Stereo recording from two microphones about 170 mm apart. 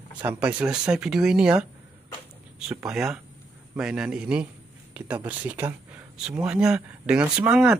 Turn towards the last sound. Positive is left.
turn(degrees=-5)  # may be behind; listen again after turning